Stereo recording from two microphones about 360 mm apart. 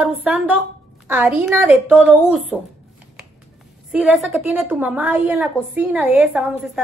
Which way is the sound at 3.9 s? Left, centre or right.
Centre.